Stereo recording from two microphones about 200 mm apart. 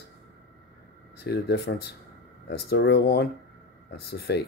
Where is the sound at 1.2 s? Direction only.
55° left (ahead or behind).